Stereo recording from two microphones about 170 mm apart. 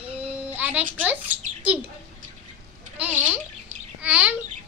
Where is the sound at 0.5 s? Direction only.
10° right (ahead or behind).